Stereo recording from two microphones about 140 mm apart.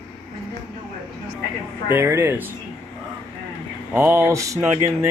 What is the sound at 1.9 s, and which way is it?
Speech, 20° right (ahead or behind).